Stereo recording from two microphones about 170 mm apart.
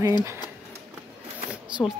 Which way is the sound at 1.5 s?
5° right (ahead or behind).